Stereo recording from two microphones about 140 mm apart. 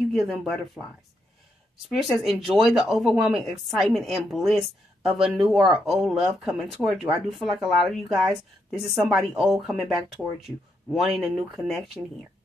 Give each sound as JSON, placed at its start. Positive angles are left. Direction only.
{"t": 0.1, "sound": "speech", "side_deg": 0}
{"t": 2.0, "sound": "speech", "side_deg": 0}